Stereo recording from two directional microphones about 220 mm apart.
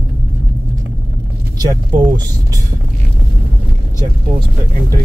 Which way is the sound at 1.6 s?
20° right (ahead or behind).